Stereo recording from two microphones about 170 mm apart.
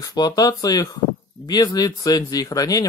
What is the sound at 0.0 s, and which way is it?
Speech, 25° left (ahead or behind).